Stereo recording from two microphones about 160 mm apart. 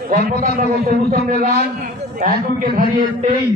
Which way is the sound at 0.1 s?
65° right (ahead or behind).